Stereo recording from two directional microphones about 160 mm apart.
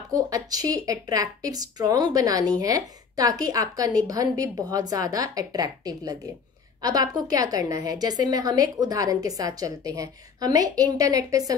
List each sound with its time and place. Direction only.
0.1 s a woman's voice: 25° right (ahead or behind)